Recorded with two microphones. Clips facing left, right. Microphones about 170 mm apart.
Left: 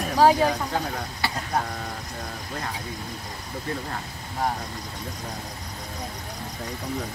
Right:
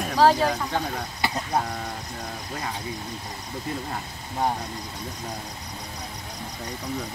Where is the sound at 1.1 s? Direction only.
20° right (ahead or behind).